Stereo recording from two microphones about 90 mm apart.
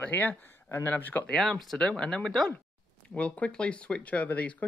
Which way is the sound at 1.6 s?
5° left (ahead or behind).